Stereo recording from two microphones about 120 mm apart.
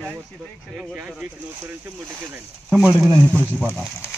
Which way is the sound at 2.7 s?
5° right (ahead or behind).